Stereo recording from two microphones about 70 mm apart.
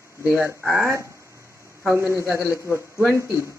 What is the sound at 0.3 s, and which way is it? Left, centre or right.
Speech, right.